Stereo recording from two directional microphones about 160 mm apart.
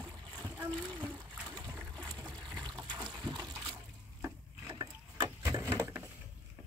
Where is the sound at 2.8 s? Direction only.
25° right (ahead or behind).